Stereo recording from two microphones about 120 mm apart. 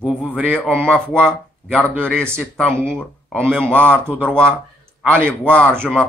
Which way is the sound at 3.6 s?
10° left (ahead or behind).